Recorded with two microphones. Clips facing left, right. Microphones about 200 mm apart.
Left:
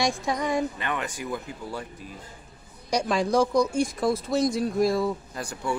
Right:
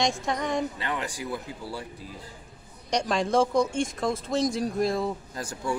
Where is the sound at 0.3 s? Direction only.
5° left (ahead or behind).